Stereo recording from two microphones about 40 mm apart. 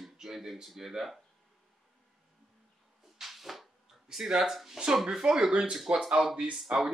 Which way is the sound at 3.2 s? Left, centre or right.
Centre.